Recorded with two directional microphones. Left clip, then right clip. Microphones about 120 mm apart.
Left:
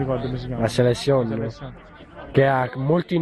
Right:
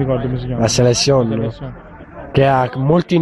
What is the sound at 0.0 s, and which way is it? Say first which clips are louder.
Speech: right 6 dB; 25° right (ahead or behind).